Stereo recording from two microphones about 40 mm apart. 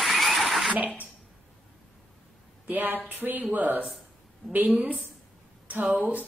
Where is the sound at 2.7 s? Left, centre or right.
Right.